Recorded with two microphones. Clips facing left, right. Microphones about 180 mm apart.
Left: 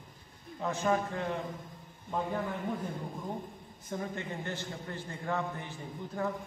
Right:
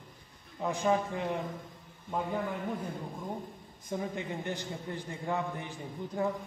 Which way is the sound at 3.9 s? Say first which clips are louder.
Right 2 dB; 15° right (ahead or behind).